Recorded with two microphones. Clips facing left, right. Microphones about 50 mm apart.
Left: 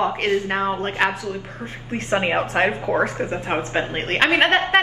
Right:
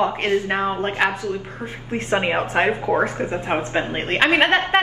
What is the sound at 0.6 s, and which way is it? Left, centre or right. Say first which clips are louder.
A woman's voice: even; centre.